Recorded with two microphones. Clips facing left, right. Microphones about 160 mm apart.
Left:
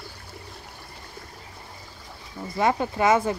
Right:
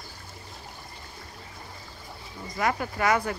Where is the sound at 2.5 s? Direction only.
25° left (ahead or behind).